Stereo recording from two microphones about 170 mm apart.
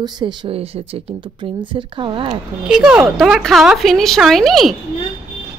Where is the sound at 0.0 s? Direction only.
25° right (ahead or behind).